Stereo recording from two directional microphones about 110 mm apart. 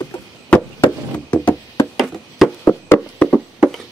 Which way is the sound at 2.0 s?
Centre (ahead or behind).